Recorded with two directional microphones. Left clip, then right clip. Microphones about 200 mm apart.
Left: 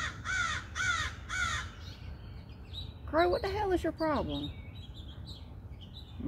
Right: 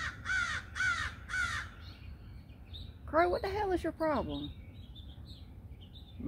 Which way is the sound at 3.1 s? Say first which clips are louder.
Left 1 dB; 10° right (ahead or behind).